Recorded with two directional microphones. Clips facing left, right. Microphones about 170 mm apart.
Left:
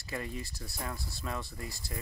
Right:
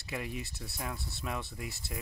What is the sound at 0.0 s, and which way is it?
Speech, 10° right (ahead or behind).